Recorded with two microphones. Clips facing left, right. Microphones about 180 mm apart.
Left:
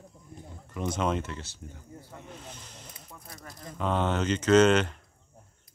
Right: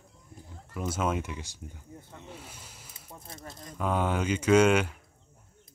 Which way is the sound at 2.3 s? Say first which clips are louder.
Left 2 dB; 10° right (ahead or behind).